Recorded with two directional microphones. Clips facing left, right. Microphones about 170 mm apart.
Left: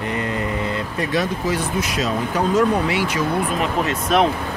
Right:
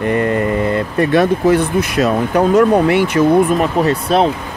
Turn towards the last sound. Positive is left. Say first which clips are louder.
# right 5 dB
turn(degrees=-35)  # may be behind; listen again after turning